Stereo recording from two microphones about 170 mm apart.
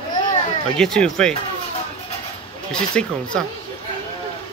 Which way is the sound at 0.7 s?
5° left (ahead or behind).